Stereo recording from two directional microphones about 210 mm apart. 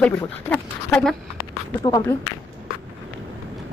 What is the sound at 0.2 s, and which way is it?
Speech, 5° left (ahead or behind).